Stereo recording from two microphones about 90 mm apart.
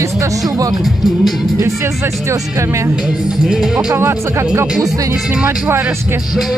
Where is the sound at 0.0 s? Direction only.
35° right (ahead or behind).